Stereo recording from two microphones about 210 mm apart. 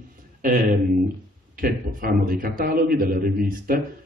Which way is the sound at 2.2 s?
45° right (ahead or behind).